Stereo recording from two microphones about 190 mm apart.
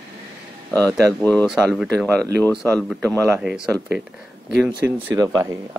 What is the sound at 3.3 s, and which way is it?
Speech, 5° right (ahead or behind).